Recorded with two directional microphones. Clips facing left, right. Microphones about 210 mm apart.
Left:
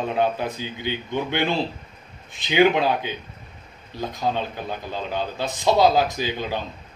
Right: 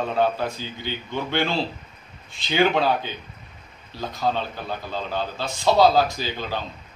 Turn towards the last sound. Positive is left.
turn(degrees=20)  # may be behind; listen again after turning